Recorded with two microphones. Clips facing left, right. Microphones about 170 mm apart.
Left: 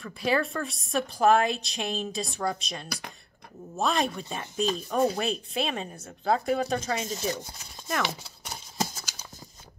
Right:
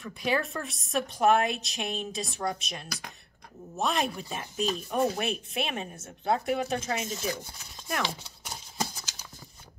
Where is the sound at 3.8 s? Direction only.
Centre (ahead or behind).